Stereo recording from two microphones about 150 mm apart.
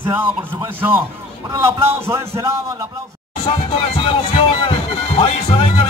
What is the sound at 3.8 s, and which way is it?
Music, 40° left (ahead or behind).